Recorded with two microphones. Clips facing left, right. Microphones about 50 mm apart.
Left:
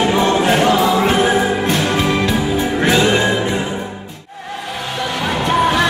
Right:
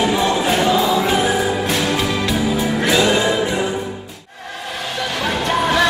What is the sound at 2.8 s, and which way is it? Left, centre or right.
Music, left.